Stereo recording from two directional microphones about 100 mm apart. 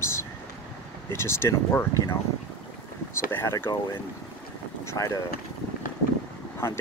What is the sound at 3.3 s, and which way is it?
Speech, 20° left (ahead or behind).